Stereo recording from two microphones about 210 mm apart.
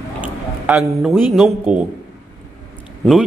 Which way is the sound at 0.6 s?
Centre (ahead or behind).